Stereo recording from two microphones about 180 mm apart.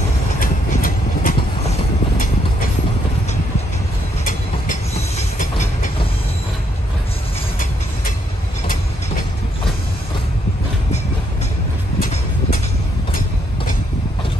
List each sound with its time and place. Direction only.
0.4 s train: 50° left (ahead or behind)
4.3 s train: 50° left (ahead or behind)
12.0 s vehicle: 50° left (ahead or behind)